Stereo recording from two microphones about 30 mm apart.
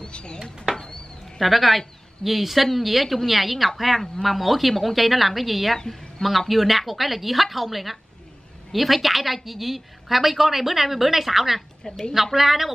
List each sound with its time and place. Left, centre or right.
0.0 s speech: left
1.4 s a woman's voice: centre
5.8 s a woman's voice: centre
6.2 s a woman's voice: centre